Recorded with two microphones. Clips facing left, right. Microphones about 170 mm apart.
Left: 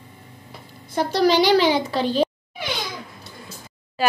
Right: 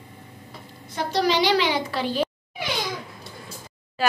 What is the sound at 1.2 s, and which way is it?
Speech, 35° left (ahead or behind).